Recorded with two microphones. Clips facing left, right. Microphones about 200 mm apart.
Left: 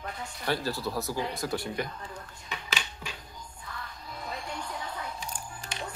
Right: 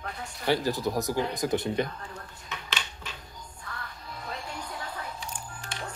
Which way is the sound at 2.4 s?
10° left (ahead or behind).